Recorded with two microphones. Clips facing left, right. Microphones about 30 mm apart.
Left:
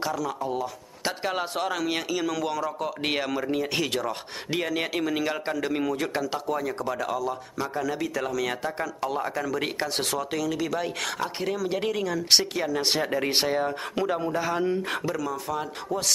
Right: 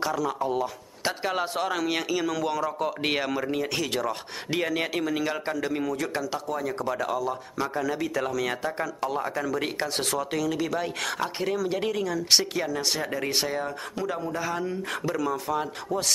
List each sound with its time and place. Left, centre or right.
0.0 s speech: centre
6.6 s a man's voice: centre
14.6 s a man's voice: left
15.1 s speech: centre